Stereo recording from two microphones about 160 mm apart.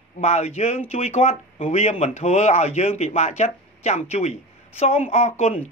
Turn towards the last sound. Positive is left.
turn(degrees=45)  # may be behind; listen again after turning